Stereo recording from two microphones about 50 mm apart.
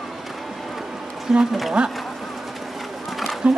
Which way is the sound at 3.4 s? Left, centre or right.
Right.